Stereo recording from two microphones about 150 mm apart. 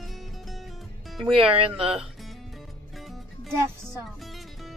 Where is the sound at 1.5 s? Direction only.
40° right (ahead or behind).